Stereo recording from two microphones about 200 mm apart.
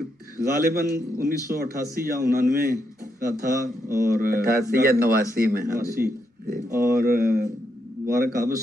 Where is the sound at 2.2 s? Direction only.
45° right (ahead or behind).